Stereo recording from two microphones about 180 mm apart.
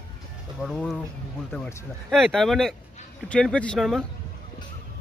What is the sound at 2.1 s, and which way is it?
A man's voice, centre (ahead or behind).